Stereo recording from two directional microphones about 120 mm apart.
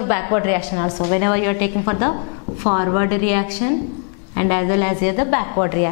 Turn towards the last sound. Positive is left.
turn(degrees=10)  # may be behind; listen again after turning